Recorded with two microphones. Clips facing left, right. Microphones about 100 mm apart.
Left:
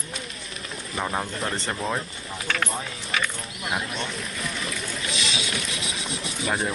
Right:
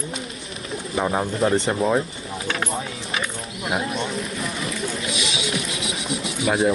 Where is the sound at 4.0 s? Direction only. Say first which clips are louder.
Right 5 dB; 30° right (ahead or behind).